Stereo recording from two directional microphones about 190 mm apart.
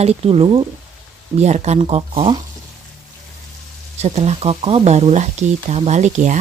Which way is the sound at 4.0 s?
35° right (ahead or behind).